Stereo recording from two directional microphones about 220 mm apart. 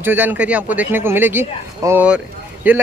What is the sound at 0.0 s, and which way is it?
A man's voice, 10° right (ahead or behind).